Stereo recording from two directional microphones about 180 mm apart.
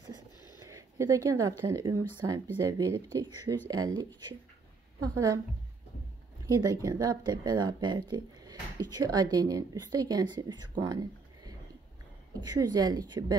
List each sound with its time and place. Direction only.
0.6 s a sound: 20° right (ahead or behind)
1.7 s speech: 20° right (ahead or behind)
6.7 s speech: 20° right (ahead or behind)